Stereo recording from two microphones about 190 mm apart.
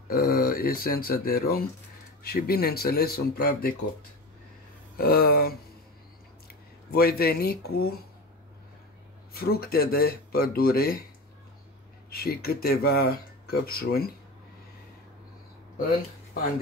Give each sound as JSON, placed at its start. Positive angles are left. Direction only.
{"t": 0.1, "sound": "speech", "side_deg": 50}
{"t": 4.9, "sound": "speech", "side_deg": 55}
{"t": 9.3, "sound": "speech", "side_deg": 50}
{"t": 12.1, "sound": "speech", "side_deg": 50}